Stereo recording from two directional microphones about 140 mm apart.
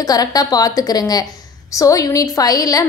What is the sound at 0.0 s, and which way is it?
A woman's voice, 25° left (ahead or behind).